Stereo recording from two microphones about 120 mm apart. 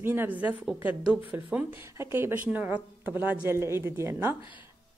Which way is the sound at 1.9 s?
20° right (ahead or behind).